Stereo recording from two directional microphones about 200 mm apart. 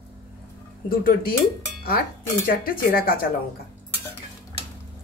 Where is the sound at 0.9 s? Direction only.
45° left (ahead or behind).